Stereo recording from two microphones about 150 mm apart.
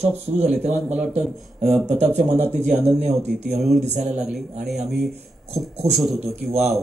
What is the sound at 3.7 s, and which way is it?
Speech, 45° right (ahead or behind).